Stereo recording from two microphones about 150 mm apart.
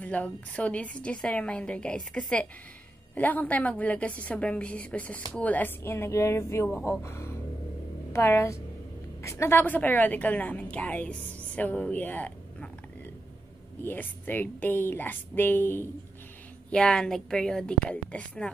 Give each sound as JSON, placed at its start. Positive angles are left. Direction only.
{"t": 0.0, "sound": "a woman's voice", "side_deg": 10}
{"t": 13.8, "sound": "a woman's voice", "side_deg": 10}